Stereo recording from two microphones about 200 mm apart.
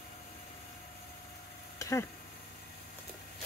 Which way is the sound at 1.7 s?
15° left (ahead or behind).